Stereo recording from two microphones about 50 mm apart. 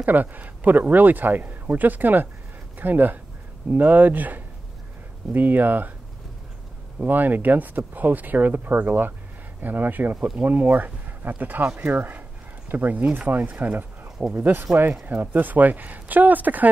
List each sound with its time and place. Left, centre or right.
0.0 s speech: right
7.0 s speech: right